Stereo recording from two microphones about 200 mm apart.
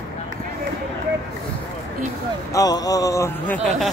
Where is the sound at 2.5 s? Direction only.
20° left (ahead or behind).